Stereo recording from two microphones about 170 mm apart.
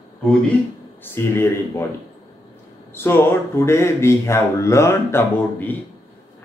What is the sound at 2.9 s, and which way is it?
Speech, 15° left (ahead or behind).